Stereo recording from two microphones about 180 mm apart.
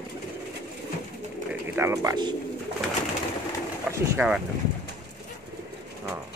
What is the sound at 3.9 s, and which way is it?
Speech, 15° right (ahead or behind).